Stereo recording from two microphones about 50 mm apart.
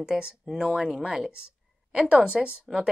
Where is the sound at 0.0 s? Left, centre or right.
Centre.